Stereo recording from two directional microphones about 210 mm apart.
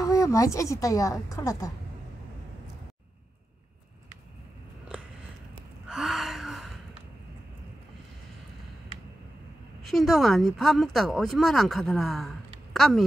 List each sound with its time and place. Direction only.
0.0 s a woman's voice: 15° left (ahead or behind)
5.9 s gasp: centre (ahead or behind)
9.8 s speech: centre (ahead or behind)